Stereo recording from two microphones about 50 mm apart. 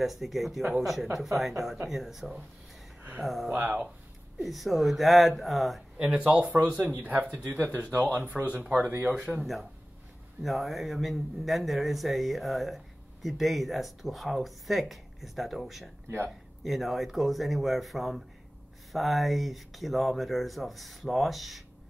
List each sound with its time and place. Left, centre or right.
0.0 s speech: centre
3.5 s speech: right
4.4 s speech: centre
5.9 s speech: right
6.9 s speech: right
8.4 s speech: right
9.4 s speech: centre